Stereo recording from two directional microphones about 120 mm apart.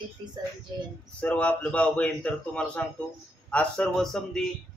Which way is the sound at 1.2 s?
10° left (ahead or behind).